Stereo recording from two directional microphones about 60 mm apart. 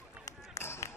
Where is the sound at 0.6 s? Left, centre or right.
Left.